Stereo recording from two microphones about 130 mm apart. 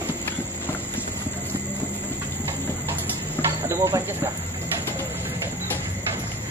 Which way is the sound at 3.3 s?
20° right (ahead or behind).